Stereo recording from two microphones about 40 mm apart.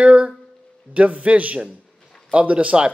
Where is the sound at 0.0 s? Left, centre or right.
Right.